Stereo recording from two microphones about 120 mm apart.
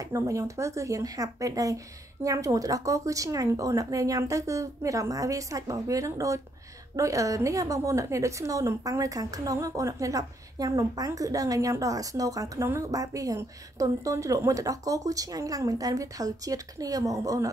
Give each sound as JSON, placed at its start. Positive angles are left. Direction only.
{"t": 0.0, "sound": "a woman's voice", "side_deg": -25}